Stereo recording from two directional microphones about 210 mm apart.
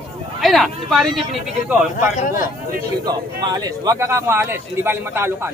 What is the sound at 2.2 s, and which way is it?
Speech, 40° left (ahead or behind).